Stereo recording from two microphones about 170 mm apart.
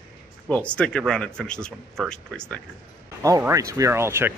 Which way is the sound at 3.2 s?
20° right (ahead or behind).